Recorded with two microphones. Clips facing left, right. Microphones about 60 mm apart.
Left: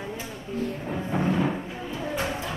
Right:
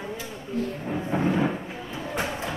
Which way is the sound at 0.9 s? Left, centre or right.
Centre.